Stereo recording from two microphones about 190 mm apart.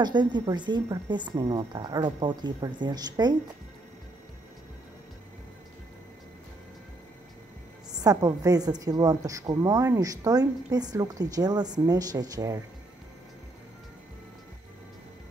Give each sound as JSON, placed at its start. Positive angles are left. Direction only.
{"t": 0.0, "sound": "a woman's voice", "side_deg": -25}
{"t": 8.0, "sound": "a woman's voice", "side_deg": -20}